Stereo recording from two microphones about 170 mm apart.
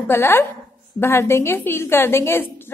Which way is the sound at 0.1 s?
15° left (ahead or behind).